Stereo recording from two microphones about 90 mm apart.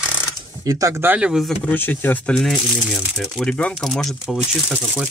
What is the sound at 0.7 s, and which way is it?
Speech, 40° right (ahead or behind).